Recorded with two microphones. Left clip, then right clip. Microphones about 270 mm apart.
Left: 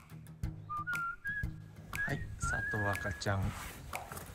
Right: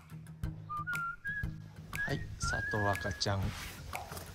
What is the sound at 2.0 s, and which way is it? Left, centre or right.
Whistling, centre.